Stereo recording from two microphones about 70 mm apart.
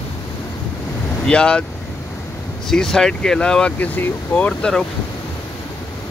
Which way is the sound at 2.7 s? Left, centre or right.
Centre.